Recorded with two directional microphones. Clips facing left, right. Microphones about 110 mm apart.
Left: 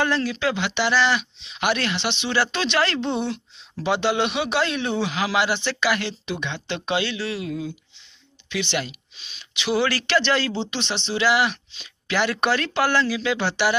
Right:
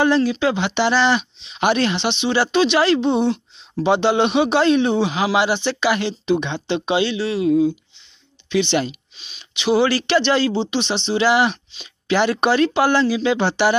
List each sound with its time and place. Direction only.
0.0 s speech: 20° right (ahead or behind)